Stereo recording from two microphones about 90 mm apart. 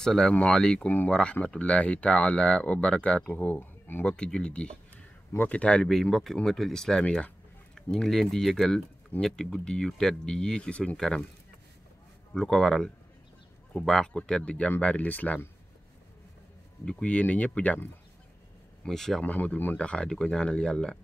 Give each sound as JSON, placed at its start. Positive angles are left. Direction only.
{"t": 0.0, "sound": "speech", "side_deg": 5}
{"t": 4.0, "sound": "speech", "side_deg": 10}
{"t": 12.4, "sound": "speech", "side_deg": 5}
{"t": 16.8, "sound": "speech", "side_deg": 10}
{"t": 18.8, "sound": "speech", "side_deg": 5}
{"t": 19.2, "sound": "speech", "side_deg": 20}